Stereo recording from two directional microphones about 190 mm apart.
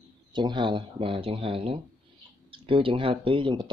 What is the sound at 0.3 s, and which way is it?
Speech, 25° right (ahead or behind).